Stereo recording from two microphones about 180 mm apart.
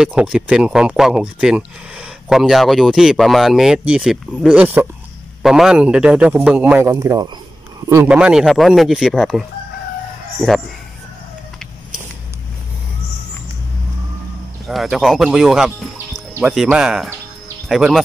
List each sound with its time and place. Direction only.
0.0 s a man's voice: 5° right (ahead or behind)
14.7 s speech: centre (ahead or behind)